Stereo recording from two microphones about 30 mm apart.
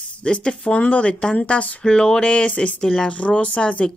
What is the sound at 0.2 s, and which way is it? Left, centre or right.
Speech, left.